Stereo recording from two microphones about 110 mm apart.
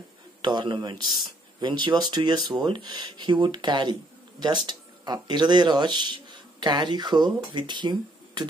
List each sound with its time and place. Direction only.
0.4 s speech: 45° right (ahead or behind)